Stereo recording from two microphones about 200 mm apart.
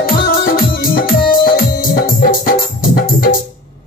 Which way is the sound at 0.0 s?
45° left (ahead or behind).